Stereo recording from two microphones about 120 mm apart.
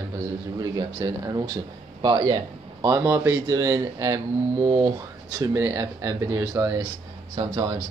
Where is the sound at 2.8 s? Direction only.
25° right (ahead or behind).